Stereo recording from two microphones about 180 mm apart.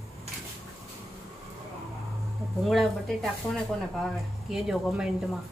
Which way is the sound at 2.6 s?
Centre (ahead or behind).